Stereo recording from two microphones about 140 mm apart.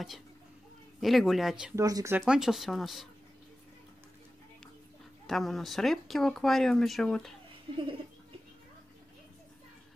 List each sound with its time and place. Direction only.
1.0 s speech: centre (ahead or behind)
1.8 s speech: 25° right (ahead or behind)
2.1 s speech: 5° right (ahead or behind)
5.2 s speech: centre (ahead or behind)